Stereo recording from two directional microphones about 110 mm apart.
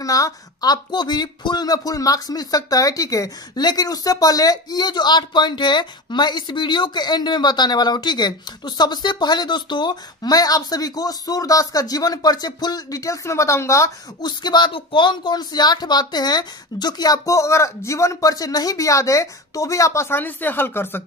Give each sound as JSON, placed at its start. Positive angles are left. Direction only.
{"t": 0.0, "sound": "speech", "side_deg": 30}
{"t": 14.2, "sound": "speech", "side_deg": 40}